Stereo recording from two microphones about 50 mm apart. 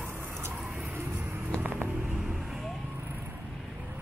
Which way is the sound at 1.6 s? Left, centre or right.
Right.